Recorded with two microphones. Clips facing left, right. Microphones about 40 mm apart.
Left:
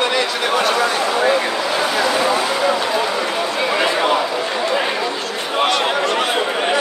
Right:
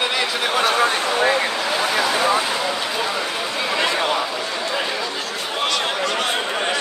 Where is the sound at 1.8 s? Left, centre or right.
Centre.